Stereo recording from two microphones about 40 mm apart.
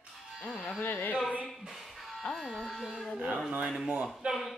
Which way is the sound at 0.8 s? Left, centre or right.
Left.